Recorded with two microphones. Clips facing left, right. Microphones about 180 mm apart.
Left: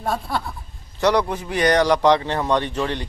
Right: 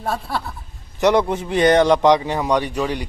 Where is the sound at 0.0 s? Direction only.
Centre (ahead or behind).